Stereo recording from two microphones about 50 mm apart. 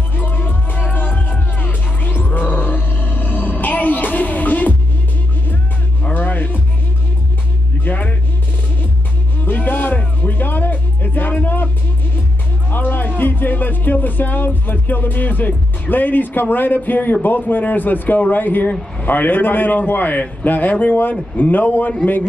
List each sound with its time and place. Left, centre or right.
0.1 s music: left
6.0 s music: left
7.8 s music: left
9.4 s music: left
12.7 s music: left
19.0 s a man's voice: left